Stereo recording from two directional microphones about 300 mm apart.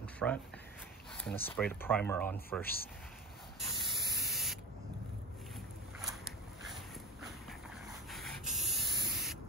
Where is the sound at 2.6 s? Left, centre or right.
Left.